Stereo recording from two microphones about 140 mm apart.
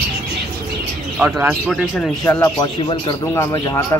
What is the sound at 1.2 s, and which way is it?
Speech, 15° right (ahead or behind).